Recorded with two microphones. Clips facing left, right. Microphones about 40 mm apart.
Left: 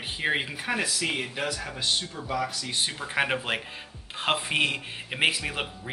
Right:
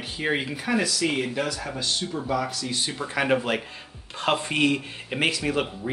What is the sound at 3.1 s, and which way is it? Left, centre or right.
Speech, centre.